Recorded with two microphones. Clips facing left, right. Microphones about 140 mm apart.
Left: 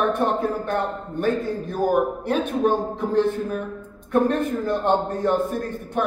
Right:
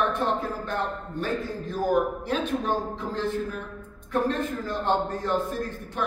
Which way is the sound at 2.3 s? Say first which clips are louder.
Left 6 dB; 60° left (ahead or behind).